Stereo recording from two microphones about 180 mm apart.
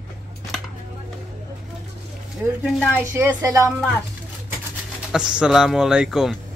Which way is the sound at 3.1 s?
15° right (ahead or behind).